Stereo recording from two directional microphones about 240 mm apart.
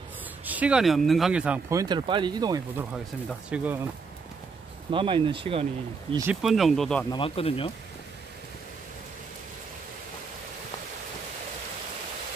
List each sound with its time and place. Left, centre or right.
0.5 s speech: centre
3.3 s speech: centre
4.9 s speech: right
6.4 s speech: centre
7.1 s speech: left